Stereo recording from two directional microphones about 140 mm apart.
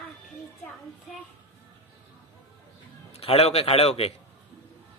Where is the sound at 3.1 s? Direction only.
45° left (ahead or behind).